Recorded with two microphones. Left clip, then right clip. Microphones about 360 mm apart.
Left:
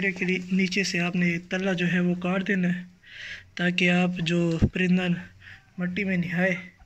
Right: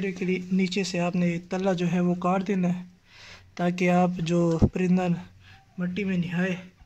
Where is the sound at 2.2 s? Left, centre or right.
Centre.